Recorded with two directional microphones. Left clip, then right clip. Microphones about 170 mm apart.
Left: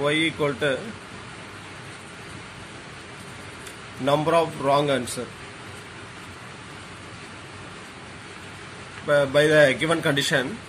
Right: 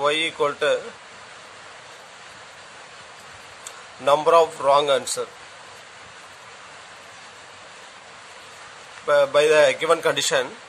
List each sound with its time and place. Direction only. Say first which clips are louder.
0.0 s speech: right 2 dB; 90° right
4.0 s a man's voice: right 4 dB; 80° right
9.0 s speech: right 2 dB; 70° right (ahead or behind)